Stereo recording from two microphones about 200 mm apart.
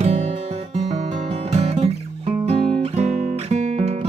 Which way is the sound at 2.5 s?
30° right (ahead or behind).